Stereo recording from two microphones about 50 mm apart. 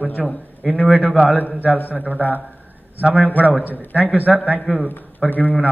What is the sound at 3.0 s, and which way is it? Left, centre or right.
Speech, right.